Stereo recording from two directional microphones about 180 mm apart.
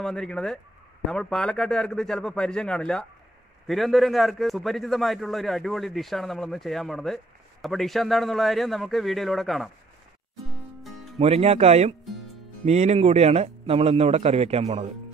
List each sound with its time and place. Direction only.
0.0 s a man's voice: 5° left (ahead or behind)
10.8 s music: centre (ahead or behind)
11.1 s a man's voice: 35° right (ahead or behind)